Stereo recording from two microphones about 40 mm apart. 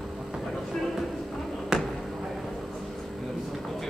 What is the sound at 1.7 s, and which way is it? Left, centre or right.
Basketball bounce, centre.